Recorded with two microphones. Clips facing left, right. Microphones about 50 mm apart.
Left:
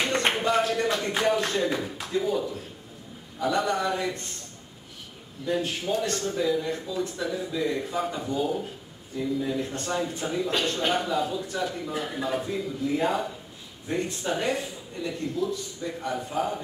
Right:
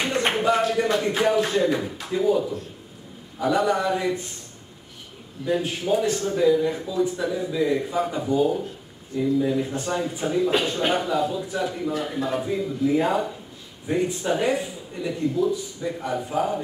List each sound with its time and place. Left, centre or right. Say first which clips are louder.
0.0 s a man's voice: right 3 dB; centre
5.4 s a man's voice: right 3 dB; centre